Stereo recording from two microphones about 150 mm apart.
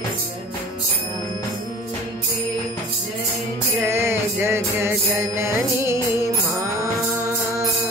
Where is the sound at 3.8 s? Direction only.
15° right (ahead or behind).